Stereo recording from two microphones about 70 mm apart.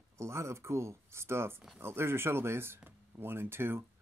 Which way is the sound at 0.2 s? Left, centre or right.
Right.